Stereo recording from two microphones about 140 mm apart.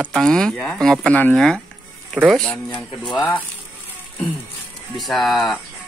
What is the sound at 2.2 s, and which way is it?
Speech, 10° right (ahead or behind).